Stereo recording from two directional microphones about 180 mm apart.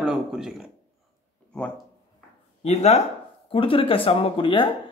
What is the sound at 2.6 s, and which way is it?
Speech, 40° left (ahead or behind).